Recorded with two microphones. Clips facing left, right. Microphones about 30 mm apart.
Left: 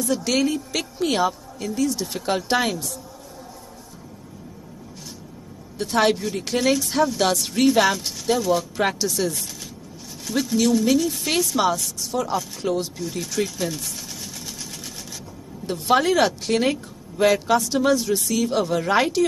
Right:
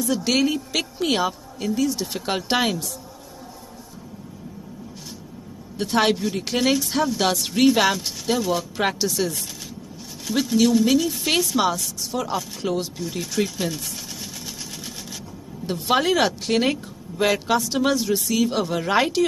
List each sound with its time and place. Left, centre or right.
0.2 s speech: centre
5.8 s speech: centre
15.6 s speech: centre